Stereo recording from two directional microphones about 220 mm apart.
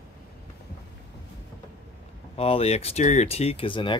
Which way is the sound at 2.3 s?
25° left (ahead or behind).